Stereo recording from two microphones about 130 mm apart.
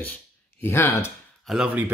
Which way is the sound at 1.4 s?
Centre (ahead or behind).